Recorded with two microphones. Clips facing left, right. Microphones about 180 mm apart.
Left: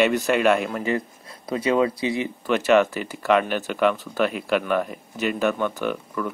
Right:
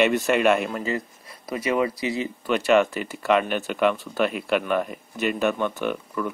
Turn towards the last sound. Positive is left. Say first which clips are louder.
# even
turn(degrees=5)  # may be behind; listen again after turning